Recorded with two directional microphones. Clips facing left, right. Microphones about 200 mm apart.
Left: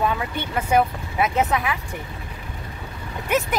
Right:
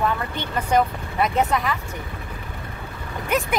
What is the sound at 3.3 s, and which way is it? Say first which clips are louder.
Speech: left 1 dB; centre (ahead or behind).